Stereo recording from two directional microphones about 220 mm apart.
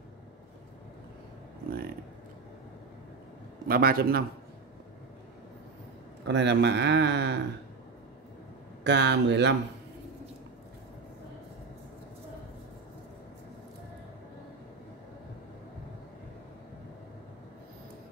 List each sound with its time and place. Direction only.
3.6 s speech: 40° right (ahead or behind)
6.2 s speech: 50° right (ahead or behind)
8.8 s speech: 50° right (ahead or behind)